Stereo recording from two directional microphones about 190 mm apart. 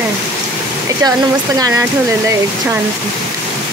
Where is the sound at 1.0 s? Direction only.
20° right (ahead or behind).